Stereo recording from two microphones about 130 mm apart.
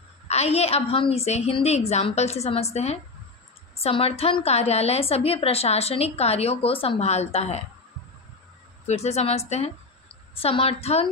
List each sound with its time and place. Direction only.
0.3 s a woman's voice: 55° left (ahead or behind)
8.8 s a woman's voice: 55° left (ahead or behind)